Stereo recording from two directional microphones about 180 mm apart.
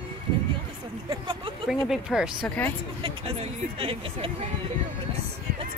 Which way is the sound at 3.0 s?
30° right (ahead or behind).